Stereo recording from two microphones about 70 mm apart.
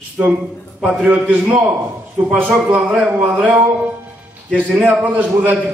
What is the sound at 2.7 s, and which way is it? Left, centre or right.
Speech, centre.